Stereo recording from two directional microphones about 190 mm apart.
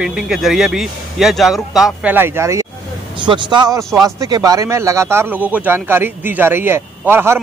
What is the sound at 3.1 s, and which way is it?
Speech, 25° right (ahead or behind).